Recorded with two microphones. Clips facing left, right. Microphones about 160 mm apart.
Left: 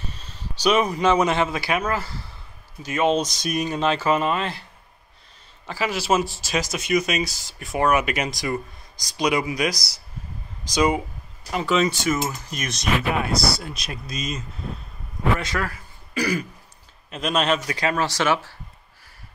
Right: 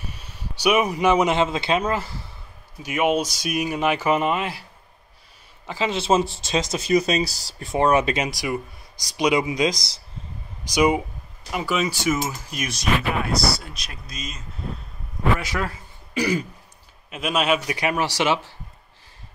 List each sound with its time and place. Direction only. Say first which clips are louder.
0.0 s speech: even; 15° right (ahead or behind)
5.7 s speech: right 2 dB; 20° right (ahead or behind)
8.3 s speech: even; 10° right (ahead or behind)
13.7 s speech: left 6 dB; 5° left (ahead or behind)
15.4 s speech: even; 20° right (ahead or behind)
17.1 s speech: even; 5° right (ahead or behind)